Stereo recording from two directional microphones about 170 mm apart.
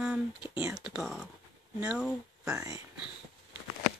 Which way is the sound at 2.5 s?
20° right (ahead or behind).